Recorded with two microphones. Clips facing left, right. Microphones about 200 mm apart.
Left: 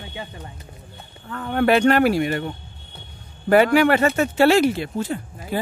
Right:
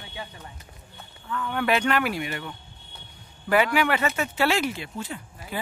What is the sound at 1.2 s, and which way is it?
Speech, 45° left (ahead or behind).